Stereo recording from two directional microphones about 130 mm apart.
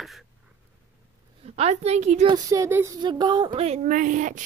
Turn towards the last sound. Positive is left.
turn(degrees=-75)  # may be behind; listen again after turning